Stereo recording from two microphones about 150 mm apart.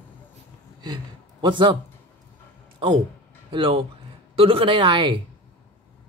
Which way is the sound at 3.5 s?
35° right (ahead or behind).